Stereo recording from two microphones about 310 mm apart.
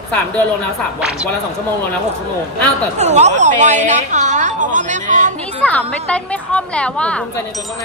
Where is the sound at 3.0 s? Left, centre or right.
Right.